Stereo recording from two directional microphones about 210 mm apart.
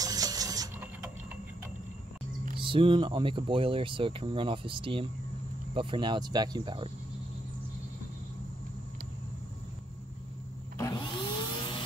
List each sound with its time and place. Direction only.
0.0 s a sound: 15° right (ahead or behind)
2.5 s speech: 25° right (ahead or behind)
10.8 s vacuum cleaner: 20° left (ahead or behind)